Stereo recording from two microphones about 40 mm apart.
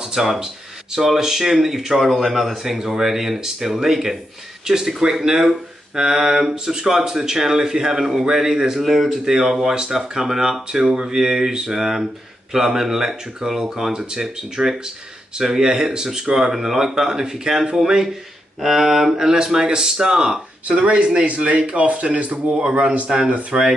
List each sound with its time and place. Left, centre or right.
0.0 s a sound: centre
0.9 s a man's voice: centre
2.5 s a man's voice: centre
20.6 s a man's voice: right